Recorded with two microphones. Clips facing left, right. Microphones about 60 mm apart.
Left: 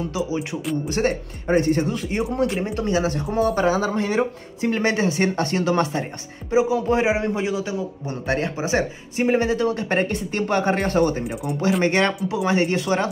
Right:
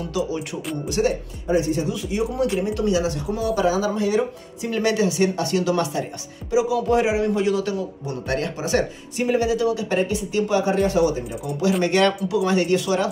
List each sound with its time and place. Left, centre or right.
0.8 s speech: left
2.6 s speech: left
11.8 s speech: left